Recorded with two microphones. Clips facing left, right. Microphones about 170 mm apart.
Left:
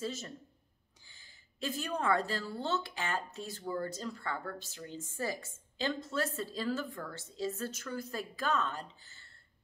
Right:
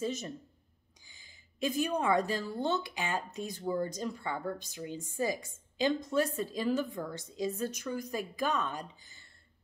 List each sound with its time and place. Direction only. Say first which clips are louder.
0.0 s a woman's voice: right 4 dB; 20° right (ahead or behind)